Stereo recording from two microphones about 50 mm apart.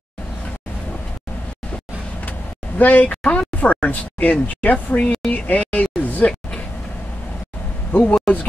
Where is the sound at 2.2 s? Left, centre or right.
Left.